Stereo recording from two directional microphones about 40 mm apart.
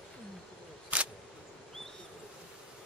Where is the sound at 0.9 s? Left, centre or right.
Right.